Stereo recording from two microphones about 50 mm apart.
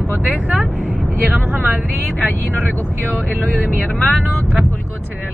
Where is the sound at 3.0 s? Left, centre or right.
Left.